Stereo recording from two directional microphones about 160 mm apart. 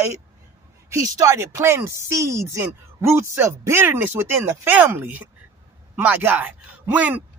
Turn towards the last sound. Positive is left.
turn(degrees=-10)  # may be behind; listen again after turning